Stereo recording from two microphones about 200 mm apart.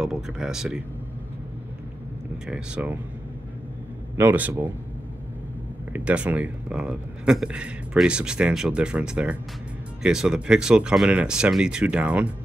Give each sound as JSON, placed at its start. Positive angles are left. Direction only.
{"t": 0.0, "sound": "speech", "side_deg": -5}
{"t": 2.4, "sound": "speech", "side_deg": -5}
{"t": 4.2, "sound": "speech", "side_deg": -10}
{"t": 5.9, "sound": "speech", "side_deg": -5}